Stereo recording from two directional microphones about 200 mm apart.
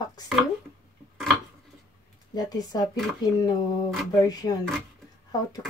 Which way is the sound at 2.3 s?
20° left (ahead or behind).